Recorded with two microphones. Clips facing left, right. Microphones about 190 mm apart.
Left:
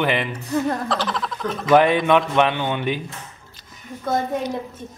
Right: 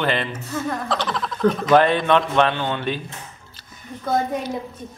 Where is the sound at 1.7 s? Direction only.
10° left (ahead or behind).